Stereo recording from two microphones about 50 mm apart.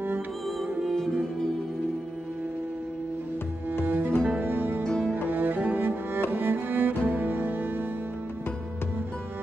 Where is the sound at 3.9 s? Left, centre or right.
Right.